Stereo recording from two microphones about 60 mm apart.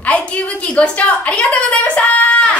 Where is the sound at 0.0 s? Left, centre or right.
Left.